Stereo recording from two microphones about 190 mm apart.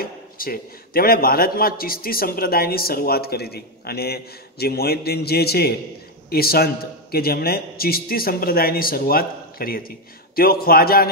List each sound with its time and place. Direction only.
0.0 s a man's voice: 50° left (ahead or behind)